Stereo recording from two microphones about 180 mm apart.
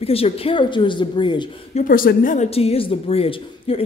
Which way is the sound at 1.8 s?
50° left (ahead or behind).